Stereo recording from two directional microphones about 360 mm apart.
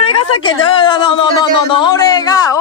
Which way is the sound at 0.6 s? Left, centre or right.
Centre.